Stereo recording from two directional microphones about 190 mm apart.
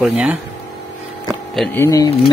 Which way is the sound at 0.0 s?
5° right (ahead or behind).